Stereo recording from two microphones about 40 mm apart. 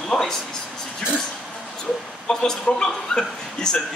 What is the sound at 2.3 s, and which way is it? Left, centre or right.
A man's voice, centre.